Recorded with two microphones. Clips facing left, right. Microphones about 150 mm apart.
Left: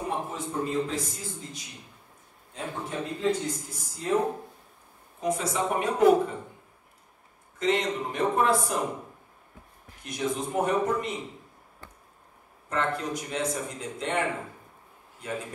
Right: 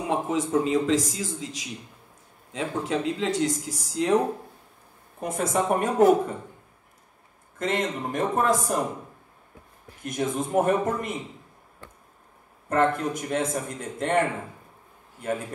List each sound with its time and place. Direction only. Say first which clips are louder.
0.0 s a man's voice: right 6 dB; 90° right
5.2 s a man's voice: right 2 dB; 50° right (ahead or behind)
7.5 s a man's voice: left 1 dB; 50° right (ahead or behind)
10.0 s a man's voice: right 3 dB; 50° right (ahead or behind)
12.6 s a man's voice: right 6 dB; 50° right (ahead or behind)